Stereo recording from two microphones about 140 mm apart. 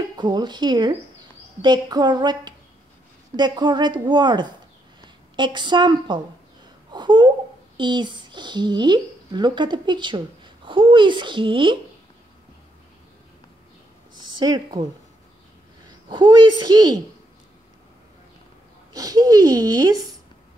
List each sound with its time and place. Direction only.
0.2 s a woman's voice: 30° right (ahead or behind)
14.4 s speech: 30° right (ahead or behind)
16.1 s speech: 35° right (ahead or behind)
18.9 s speech: 25° right (ahead or behind)